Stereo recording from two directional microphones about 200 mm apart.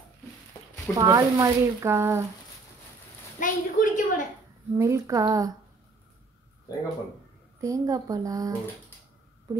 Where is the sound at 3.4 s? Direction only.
40° left (ahead or behind).